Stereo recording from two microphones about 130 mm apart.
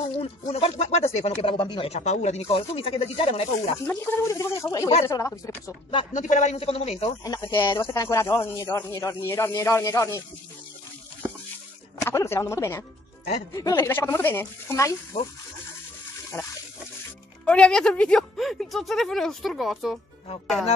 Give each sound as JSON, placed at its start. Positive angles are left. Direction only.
{"t": 0.2, "sound": "speech", "side_deg": 45}
{"t": 1.9, "sound": "speech", "side_deg": 60}
{"t": 3.8, "sound": "speech", "side_deg": 15}
{"t": 6.1, "sound": "speech", "side_deg": 65}
{"t": 7.3, "sound": "speech", "side_deg": 20}
{"t": 12.0, "sound": "speech", "side_deg": 20}
{"t": 17.5, "sound": "speech", "side_deg": 5}